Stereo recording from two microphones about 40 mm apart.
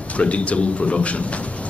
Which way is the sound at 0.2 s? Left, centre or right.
Left.